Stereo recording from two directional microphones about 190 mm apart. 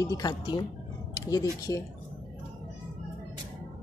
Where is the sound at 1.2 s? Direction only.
20° left (ahead or behind).